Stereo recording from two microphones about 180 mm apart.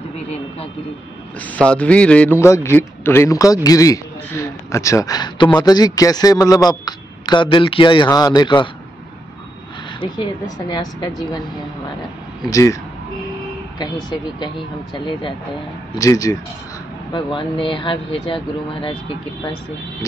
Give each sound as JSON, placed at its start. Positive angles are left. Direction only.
{"t": 1.4, "sound": "a man's voice", "side_deg": 5}
{"t": 10.7, "sound": "a man's voice", "side_deg": 25}
{"t": 12.4, "sound": "a man's voice", "side_deg": 20}
{"t": 15.9, "sound": "a man's voice", "side_deg": 20}